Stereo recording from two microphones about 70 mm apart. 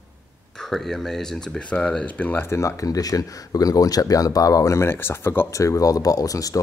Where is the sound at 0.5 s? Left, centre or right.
Centre; by 2.5 s left.